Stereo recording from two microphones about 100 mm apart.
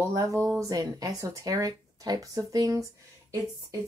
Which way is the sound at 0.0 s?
30° right (ahead or behind).